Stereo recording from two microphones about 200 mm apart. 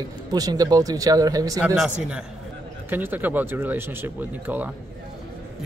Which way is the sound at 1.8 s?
5° right (ahead or behind).